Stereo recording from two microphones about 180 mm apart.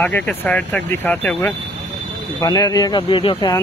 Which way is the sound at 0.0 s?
5° left (ahead or behind).